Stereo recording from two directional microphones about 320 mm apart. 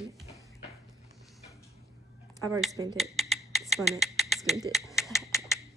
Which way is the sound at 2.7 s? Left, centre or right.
Centre.